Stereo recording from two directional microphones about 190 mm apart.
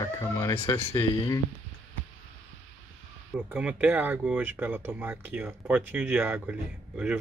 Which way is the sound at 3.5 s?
5° right (ahead or behind).